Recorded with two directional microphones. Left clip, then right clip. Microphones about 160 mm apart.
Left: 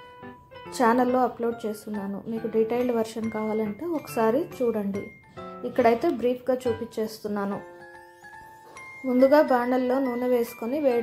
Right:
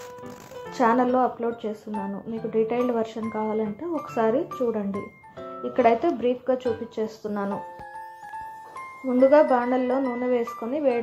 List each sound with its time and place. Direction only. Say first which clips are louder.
0.9 s speech: right 1 dB; 5° right (ahead or behind)
1.9 s speech: right 3 dB; 20° right (ahead or behind)
2.5 s speech: right 1 dB; 10° right (ahead or behind)
4.1 s speech: even; centre (ahead or behind)
4.6 s speech: even; 20° right (ahead or behind)
6.7 s speech: even; centre (ahead or behind)
9.1 s speech: right 2 dB; centre (ahead or behind)